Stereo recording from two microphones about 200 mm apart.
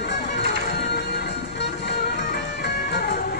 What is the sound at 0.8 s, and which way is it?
Music, 55° left (ahead or behind).